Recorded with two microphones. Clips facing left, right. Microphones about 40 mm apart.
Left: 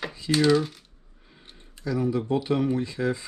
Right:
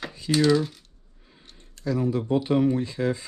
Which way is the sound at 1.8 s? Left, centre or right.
Centre.